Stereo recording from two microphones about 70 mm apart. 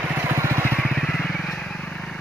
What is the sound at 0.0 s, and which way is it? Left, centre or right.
Vehicle, right.